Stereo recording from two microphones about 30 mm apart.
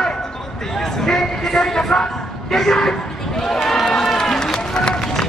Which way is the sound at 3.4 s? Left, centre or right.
Centre.